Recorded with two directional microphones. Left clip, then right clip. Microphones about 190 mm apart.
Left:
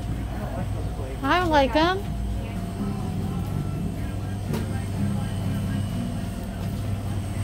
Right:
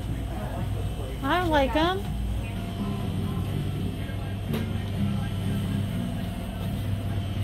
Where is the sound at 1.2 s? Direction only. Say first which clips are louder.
Left 3 dB; 5° left (ahead or behind).